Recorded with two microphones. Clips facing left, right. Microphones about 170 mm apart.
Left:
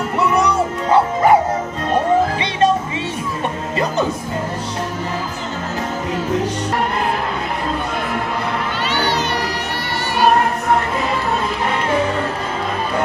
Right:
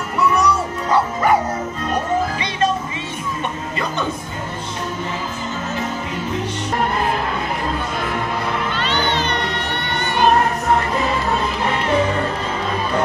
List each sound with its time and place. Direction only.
0.9 s music: 25° left (ahead or behind)
8.8 s music: 10° left (ahead or behind)